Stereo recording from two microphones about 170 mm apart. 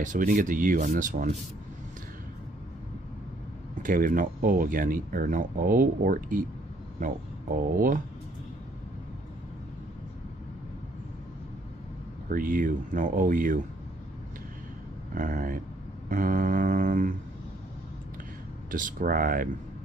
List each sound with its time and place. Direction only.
0.0 s speech: 50° right (ahead or behind)
3.8 s speech: 55° right (ahead or behind)
12.3 s speech: 55° right (ahead or behind)
15.1 s speech: 55° right (ahead or behind)
16.1 s a sound: 55° right (ahead or behind)
18.7 s speech: 50° right (ahead or behind)